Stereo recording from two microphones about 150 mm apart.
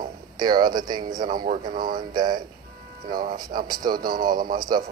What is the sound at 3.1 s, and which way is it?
Speech, 70° right (ahead or behind).